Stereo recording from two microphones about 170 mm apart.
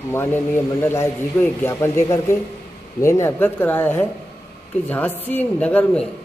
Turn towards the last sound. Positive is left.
turn(degrees=10)  # may be behind; listen again after turning